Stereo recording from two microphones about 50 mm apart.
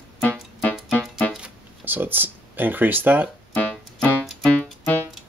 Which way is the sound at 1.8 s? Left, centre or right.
Right.